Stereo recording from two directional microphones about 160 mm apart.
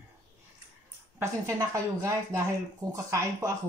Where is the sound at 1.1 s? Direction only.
20° right (ahead or behind).